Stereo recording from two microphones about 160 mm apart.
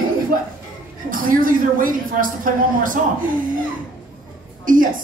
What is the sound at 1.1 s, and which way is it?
A man's voice, 60° right (ahead or behind).